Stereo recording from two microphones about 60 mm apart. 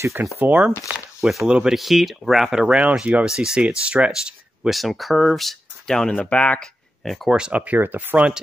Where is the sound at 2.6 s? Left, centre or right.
Centre.